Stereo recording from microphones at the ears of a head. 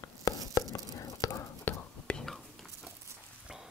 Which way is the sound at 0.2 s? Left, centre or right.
Left.